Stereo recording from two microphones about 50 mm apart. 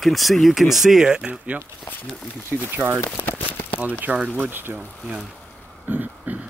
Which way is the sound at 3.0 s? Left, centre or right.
Left.